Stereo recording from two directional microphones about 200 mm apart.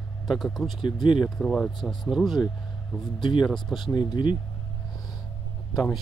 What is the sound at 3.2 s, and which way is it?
Speech, 25° left (ahead or behind).